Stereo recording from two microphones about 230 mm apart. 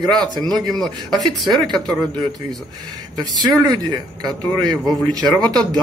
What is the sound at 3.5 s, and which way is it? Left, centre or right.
Speech, centre.